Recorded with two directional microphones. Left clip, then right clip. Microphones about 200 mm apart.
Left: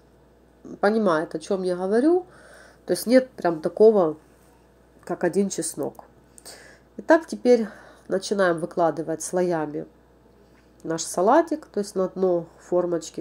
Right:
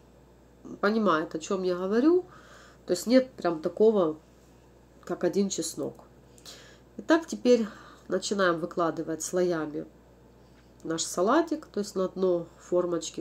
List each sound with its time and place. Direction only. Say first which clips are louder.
0.7 s speech: left 4 dB; 10° left (ahead or behind)
5.5 s speech: left 3 dB; centre (ahead or behind)
6.4 s a sound: left 3 dB; 15° left (ahead or behind)
7.2 s speech: left 4 dB; 5° left (ahead or behind)
10.9 s speech: left 6 dB; 15° left (ahead or behind)